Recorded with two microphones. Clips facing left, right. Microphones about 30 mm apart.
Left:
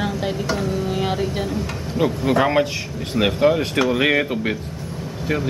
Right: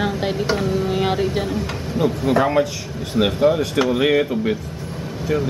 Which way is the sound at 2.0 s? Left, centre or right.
Left.